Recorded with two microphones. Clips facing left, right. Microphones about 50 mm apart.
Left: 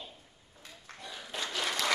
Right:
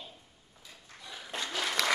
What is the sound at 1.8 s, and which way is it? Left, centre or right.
Applause, right.